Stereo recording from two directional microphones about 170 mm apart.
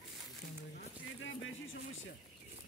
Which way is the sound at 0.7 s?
90° left.